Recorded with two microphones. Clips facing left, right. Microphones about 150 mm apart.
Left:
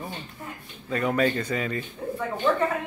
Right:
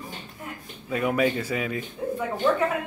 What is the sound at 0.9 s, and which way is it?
A man's voice, 10° right (ahead or behind).